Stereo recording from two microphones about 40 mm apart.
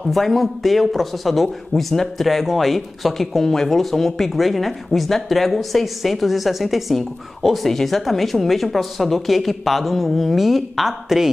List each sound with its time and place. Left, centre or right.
0.0 s speech: centre